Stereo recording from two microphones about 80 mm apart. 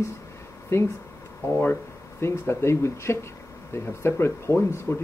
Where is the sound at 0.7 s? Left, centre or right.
Left.